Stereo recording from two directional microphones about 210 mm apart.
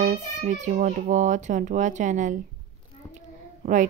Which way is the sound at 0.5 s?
35° right (ahead or behind).